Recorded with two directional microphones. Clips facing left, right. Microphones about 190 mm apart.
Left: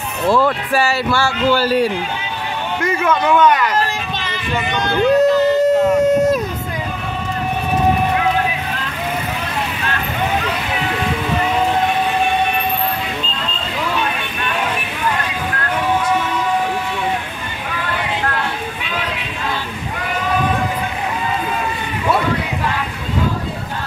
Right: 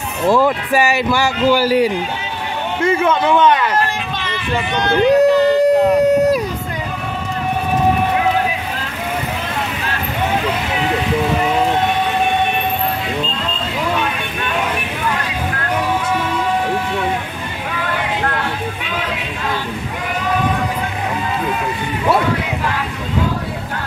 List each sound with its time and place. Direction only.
0.3 s a man's voice: 15° right (ahead or behind)
2.8 s a man's voice: 30° right (ahead or behind)
4.7 s a sound: 15° right (ahead or behind)